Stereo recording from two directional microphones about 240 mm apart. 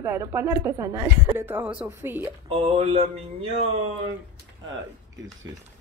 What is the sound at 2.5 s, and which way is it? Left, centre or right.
Speech, right.